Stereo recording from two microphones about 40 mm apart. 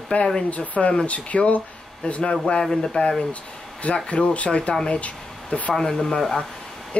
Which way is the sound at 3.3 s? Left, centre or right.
Left.